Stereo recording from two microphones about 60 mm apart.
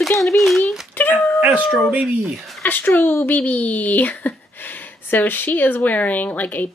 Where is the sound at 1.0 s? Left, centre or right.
Left.